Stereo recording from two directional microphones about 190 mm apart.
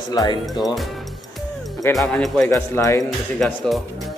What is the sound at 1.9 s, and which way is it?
Speech, centre (ahead or behind).